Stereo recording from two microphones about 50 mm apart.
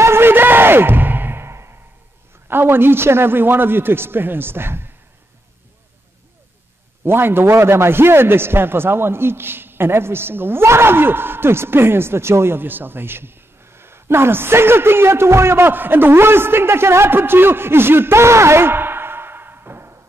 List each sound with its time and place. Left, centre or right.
0.0 s music: right
2.4 s a man's voice: right
7.1 s a man's voice: right